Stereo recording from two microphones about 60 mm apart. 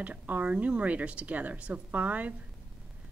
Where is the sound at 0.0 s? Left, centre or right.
Right.